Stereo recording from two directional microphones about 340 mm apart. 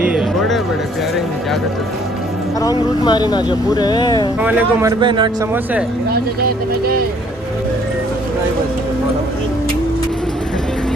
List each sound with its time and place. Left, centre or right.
0.0 s music: centre
2.6 s speech: centre
4.4 s a man's voice: centre
6.1 s speech: right